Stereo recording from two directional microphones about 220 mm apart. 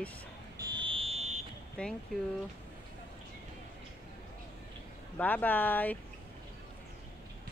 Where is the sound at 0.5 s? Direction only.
20° right (ahead or behind).